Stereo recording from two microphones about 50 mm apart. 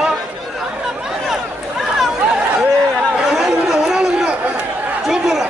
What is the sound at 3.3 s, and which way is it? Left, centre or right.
Chatter, centre.